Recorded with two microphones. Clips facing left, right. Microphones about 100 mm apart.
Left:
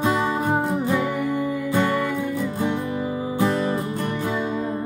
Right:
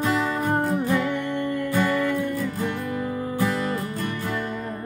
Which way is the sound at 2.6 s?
20° left (ahead or behind).